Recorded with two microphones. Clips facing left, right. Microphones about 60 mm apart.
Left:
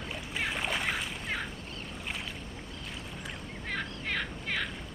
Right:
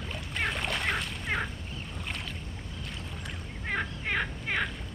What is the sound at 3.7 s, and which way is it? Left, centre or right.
Turkey, centre.